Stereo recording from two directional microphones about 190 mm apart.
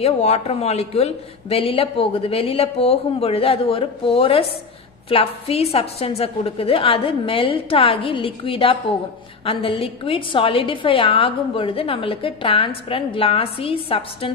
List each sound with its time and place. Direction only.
0.0 s a woman's voice: 35° left (ahead or behind)